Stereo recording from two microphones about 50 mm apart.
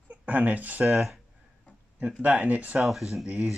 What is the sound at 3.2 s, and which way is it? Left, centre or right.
Speech, right.